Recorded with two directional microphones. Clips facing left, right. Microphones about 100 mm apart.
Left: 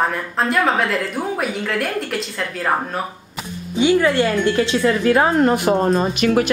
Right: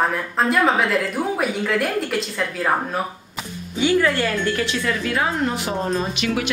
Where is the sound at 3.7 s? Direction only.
20° left (ahead or behind).